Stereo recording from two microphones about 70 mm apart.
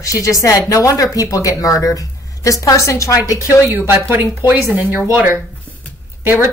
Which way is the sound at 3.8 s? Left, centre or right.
Right.